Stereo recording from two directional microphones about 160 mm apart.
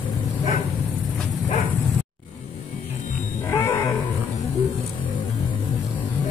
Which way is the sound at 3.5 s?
15° left (ahead or behind).